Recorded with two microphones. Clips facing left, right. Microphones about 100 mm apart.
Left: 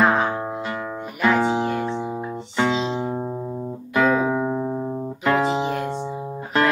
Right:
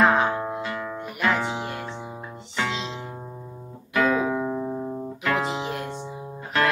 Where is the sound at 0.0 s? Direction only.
5° left (ahead or behind).